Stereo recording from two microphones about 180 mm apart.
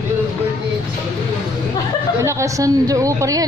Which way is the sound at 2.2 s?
15° right (ahead or behind).